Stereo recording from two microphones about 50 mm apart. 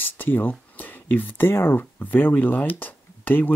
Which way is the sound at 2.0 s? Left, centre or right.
Left.